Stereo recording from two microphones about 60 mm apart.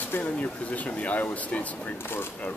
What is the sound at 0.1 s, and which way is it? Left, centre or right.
Speech, left.